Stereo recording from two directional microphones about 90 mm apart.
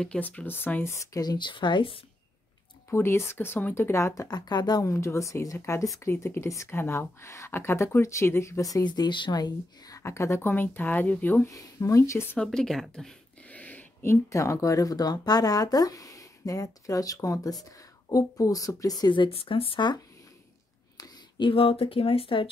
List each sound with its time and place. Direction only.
0.0 s speech: 10° left (ahead or behind)
0.9 s speech: 40° left (ahead or behind); by 2.0 s 80° left
2.9 s a woman's voice: 30° left (ahead or behind)
4.3 s speech: 50° left (ahead or behind)
4.9 s speech: 35° left (ahead or behind)
8.8 s a woman's voice: 55° left (ahead or behind); by 11.4 s 20° left (ahead or behind)
11.4 s speech: 35° left (ahead or behind)
12.4 s speech: 5° left (ahead or behind)
13.5 s a sound: 15° left (ahead or behind)
14.0 s speech: 35° left (ahead or behind)
19.1 s speech: 85° left
21.4 s speech: 80° left